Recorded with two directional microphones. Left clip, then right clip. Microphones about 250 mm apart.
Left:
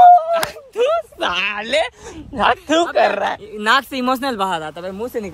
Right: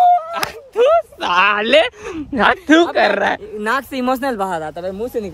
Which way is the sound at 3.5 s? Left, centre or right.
Centre.